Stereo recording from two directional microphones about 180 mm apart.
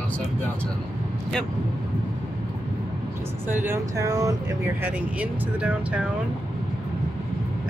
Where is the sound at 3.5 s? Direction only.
15° right (ahead or behind).